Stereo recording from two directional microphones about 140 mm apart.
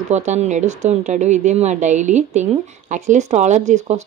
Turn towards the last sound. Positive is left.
turn(degrees=-55)  # may be behind; listen again after turning